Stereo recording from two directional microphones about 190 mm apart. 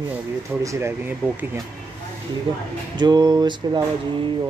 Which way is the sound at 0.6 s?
15° right (ahead or behind).